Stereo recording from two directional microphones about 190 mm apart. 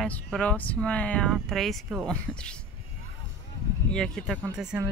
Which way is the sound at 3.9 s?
5° left (ahead or behind).